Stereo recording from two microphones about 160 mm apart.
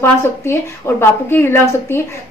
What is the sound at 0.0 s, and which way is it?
A woman's voice, 15° left (ahead or behind).